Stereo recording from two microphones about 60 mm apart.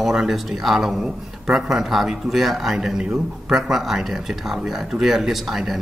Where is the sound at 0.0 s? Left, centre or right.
Centre.